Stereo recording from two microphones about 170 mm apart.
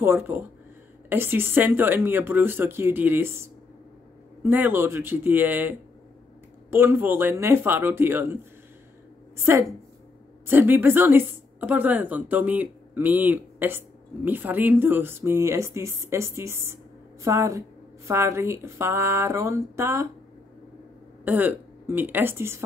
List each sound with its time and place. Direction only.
0.0 s a woman's voice: 15° right (ahead or behind)
9.4 s a woman's voice: 15° right (ahead or behind)
21.2 s a woman's voice: 10° right (ahead or behind)